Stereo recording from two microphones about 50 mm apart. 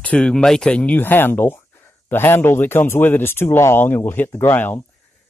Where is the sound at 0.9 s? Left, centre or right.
Left.